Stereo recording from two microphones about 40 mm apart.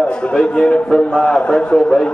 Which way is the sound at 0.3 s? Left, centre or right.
Left.